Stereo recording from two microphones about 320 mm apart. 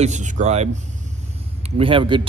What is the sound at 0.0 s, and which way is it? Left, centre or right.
Speech, right.